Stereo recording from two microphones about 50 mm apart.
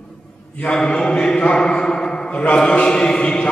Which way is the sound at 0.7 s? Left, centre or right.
Centre.